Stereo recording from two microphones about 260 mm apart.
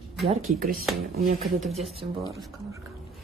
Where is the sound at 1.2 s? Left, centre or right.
Right.